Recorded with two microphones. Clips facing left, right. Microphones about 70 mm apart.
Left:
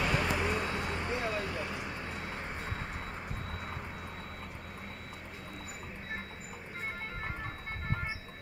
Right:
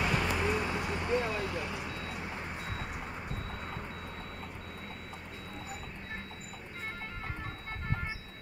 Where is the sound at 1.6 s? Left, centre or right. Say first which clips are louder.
Even; left.